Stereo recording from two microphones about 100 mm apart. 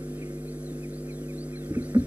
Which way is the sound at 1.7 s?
15° right (ahead or behind).